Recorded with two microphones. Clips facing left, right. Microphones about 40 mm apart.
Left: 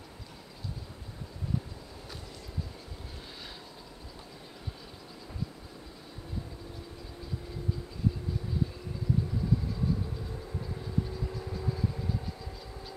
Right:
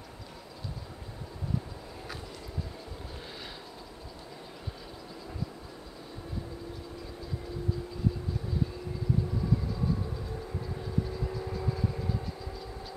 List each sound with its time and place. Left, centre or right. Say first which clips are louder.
10.6 s train: even; centre